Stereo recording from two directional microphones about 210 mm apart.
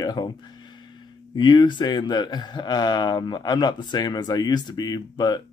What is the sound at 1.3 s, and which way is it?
A man's voice, 20° left (ahead or behind).